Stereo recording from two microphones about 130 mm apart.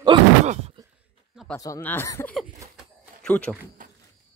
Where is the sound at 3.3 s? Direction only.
10° left (ahead or behind).